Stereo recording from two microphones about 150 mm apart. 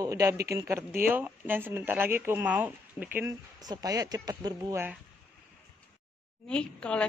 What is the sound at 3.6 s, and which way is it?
Speech, 25° right (ahead or behind).